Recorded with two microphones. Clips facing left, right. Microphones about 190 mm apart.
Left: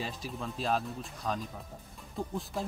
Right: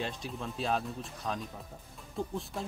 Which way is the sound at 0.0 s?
Centre (ahead or behind).